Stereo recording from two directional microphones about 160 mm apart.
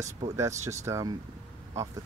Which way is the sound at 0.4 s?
20° right (ahead or behind).